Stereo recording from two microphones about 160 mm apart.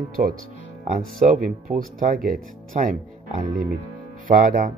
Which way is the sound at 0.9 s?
50° right (ahead or behind).